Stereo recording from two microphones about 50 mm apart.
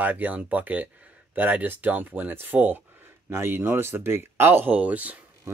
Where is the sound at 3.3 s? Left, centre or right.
Right.